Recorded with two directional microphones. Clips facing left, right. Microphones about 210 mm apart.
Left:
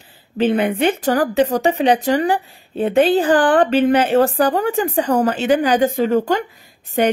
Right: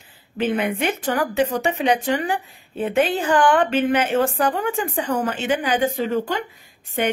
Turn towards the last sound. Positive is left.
turn(degrees=40)  # may be behind; listen again after turning